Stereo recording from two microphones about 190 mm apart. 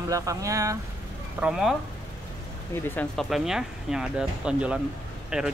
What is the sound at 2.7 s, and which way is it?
Speech, 10° left (ahead or behind).